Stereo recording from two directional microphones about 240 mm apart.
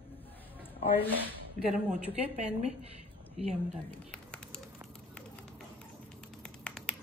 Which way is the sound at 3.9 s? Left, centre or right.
Centre.